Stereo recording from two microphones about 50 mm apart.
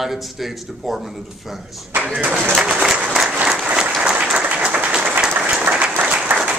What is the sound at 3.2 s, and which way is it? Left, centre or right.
Applause, centre.